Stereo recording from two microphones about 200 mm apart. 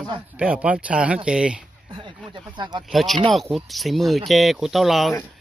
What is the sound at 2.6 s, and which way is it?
Speech, 25° right (ahead or behind).